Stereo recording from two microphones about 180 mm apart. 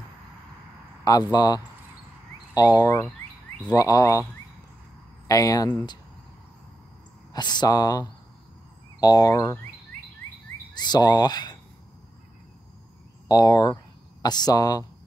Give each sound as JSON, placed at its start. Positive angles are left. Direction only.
{"t": 1.3, "sound": "speech", "side_deg": 20}
{"t": 5.3, "sound": "speech", "side_deg": 20}
{"t": 7.3, "sound": "speech", "side_deg": 25}
{"t": 10.7, "sound": "speech", "side_deg": 25}
{"t": 13.3, "sound": "speech", "side_deg": 20}